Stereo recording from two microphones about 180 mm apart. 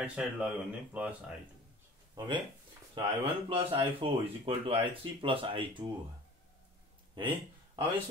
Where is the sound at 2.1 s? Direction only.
25° right (ahead or behind).